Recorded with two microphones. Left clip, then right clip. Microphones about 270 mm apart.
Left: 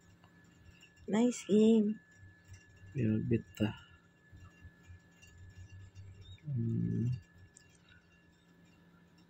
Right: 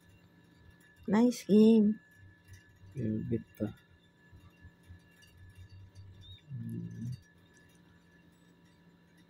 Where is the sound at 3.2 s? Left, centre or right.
Left.